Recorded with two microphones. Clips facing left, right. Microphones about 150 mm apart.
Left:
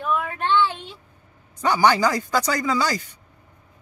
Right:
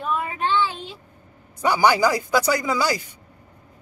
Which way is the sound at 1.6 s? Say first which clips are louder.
Even; 10° right (ahead or behind).